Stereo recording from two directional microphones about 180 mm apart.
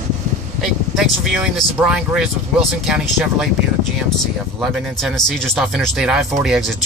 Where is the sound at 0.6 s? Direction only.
Centre (ahead or behind).